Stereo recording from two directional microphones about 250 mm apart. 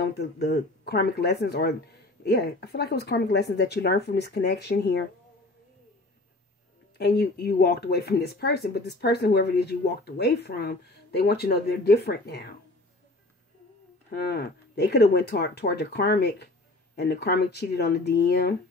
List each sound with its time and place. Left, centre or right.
0.0 s a woman's voice: left
7.0 s a woman's voice: left
14.1 s a woman's voice: left